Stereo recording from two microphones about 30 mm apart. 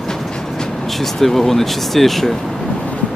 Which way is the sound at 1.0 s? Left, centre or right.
Centre.